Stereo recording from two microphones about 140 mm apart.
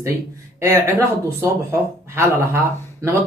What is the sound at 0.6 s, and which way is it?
Speech, 20° right (ahead or behind).